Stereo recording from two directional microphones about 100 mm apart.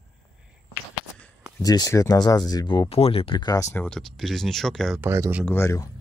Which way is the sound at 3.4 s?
35° left (ahead or behind).